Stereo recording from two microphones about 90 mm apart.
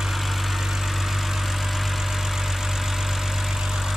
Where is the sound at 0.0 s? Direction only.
Centre (ahead or behind).